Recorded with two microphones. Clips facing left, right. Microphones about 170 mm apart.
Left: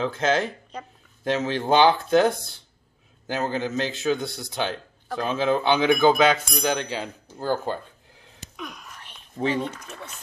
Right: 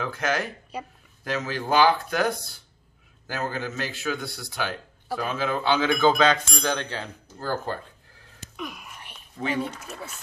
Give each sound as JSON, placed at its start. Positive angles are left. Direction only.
{"t": 0.0, "sound": "a man's voice", "side_deg": 25}
{"t": 0.7, "sound": "speech", "side_deg": -10}
{"t": 1.2, "sound": "a man's voice", "side_deg": 25}
{"t": 8.5, "sound": "whispering", "side_deg": -5}
{"t": 9.6, "sound": "speech", "side_deg": -5}